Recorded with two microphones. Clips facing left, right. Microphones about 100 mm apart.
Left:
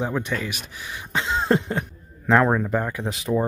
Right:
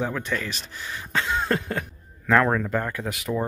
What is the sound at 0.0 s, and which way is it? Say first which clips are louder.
Speech: left 2 dB; 20° left (ahead or behind).